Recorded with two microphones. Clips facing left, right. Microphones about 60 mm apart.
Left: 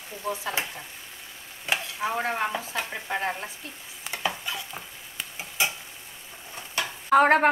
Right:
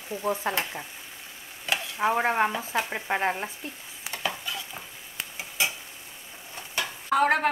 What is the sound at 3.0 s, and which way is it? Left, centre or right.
Stir, right.